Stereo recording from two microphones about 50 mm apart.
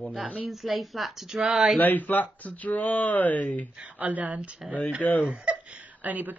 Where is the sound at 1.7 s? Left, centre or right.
Left.